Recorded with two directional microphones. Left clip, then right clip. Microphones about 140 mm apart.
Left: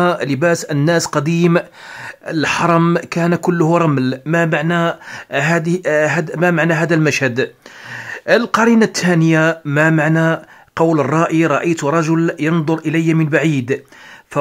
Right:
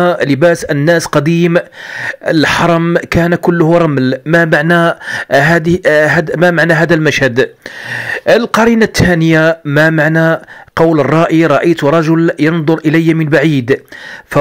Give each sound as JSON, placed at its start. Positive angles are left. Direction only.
{"t": 0.0, "sound": "speech", "side_deg": -20}